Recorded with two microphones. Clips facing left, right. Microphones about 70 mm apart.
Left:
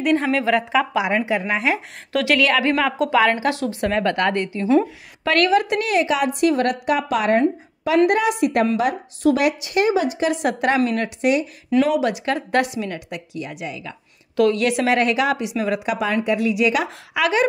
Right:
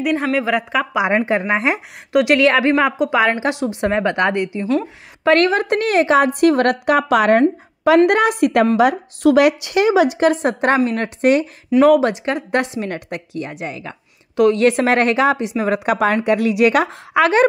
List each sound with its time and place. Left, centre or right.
0.0 s speech: centre
1.0 s a woman's voice: right
1.4 s a woman's voice: right
5.2 s a woman's voice: right
8.1 s a woman's voice: right
8.7 s a woman's voice: right
10.3 s a woman's voice: right
12.4 s a woman's voice: right
12.8 s a woman's voice: right
14.3 s a woman's voice: right
14.6 s a woman's voice: right
15.8 s a woman's voice: right
16.8 s a woman's voice: right